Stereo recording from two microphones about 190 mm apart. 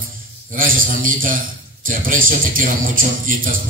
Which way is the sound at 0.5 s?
45° right (ahead or behind).